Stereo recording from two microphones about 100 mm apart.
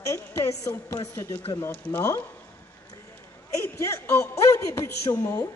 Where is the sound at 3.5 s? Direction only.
30° left (ahead or behind).